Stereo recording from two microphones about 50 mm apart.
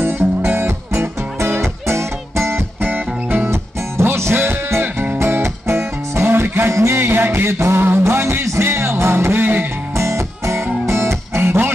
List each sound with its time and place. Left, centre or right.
0.0 s music: right
2.8 s music: right
3.4 s music: right
6.7 s music: right
9.9 s music: right